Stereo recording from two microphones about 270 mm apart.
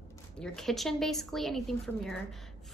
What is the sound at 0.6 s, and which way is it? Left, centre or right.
A woman's voice, centre.